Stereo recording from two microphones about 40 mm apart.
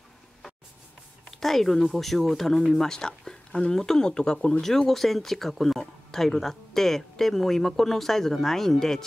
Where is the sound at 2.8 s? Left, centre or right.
Centre.